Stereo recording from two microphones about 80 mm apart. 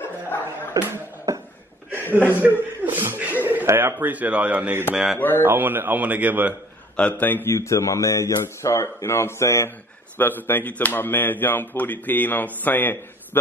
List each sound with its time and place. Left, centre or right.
0.8 s beatboxing: right
1.3 s a sound: right
2.0 s a man's voice: right
4.9 s speech: centre
5.4 s a man's voice: right
7.0 s speech: left
7.5 s speech: left
10.1 s speech: left